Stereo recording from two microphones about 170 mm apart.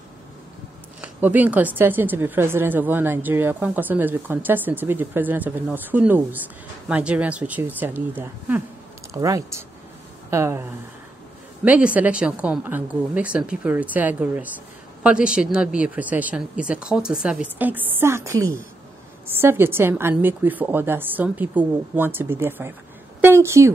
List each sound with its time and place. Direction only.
1.0 s speech: 10° right (ahead or behind)